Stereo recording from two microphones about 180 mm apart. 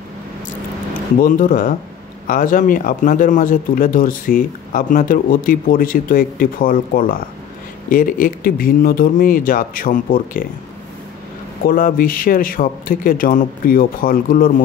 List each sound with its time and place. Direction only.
1.2 s speech: 50° left (ahead or behind)
11.6 s speech: 50° left (ahead or behind)